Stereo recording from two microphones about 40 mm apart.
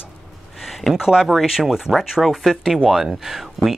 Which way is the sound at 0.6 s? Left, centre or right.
Centre.